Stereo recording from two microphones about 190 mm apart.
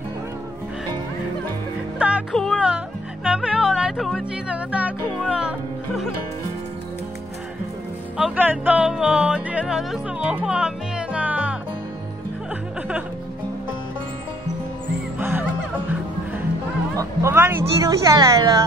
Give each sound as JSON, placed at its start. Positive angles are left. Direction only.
{"t": 2.0, "sound": "speech", "side_deg": -5}
{"t": 8.2, "sound": "music", "side_deg": -10}
{"t": 15.1, "sound": "music", "side_deg": -10}
{"t": 16.9, "sound": "speech", "side_deg": -15}